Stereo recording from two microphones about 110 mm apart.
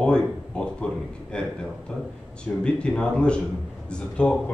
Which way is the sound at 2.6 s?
10° left (ahead or behind).